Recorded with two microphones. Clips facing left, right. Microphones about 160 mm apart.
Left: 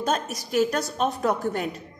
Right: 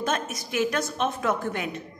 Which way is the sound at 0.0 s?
35° left (ahead or behind).